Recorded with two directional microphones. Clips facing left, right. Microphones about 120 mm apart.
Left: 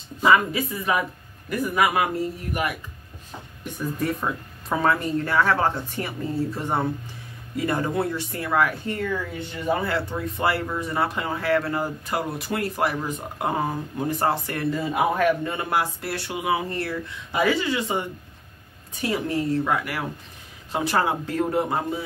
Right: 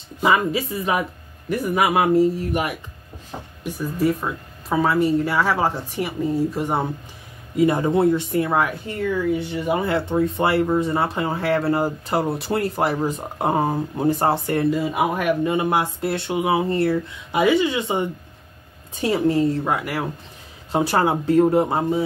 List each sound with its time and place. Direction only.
0.2 s speech: 20° right (ahead or behind)
3.6 s speech: centre (ahead or behind); by 8.7 s 25° right (ahead or behind)
8.8 s speech: 10° right (ahead or behind)
14.7 s speech: 15° right (ahead or behind)